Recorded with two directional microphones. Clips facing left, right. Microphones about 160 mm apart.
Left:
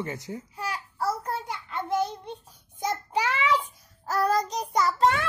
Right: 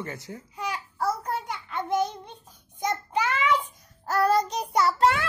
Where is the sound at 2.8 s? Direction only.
10° left (ahead or behind).